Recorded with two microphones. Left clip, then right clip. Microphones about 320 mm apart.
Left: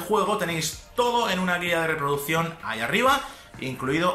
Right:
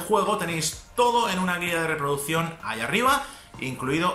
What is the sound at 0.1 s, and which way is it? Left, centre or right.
Speech, centre.